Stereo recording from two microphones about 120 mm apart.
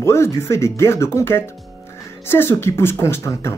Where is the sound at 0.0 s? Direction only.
20° left (ahead or behind).